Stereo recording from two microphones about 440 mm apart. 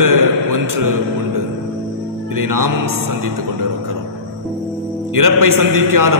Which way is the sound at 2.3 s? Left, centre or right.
Right.